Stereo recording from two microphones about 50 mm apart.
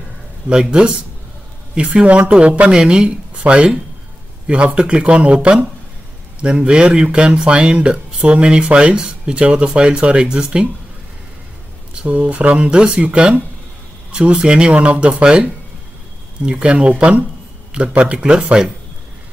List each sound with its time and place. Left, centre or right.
0.5 s speech: centre
12.0 s speech: right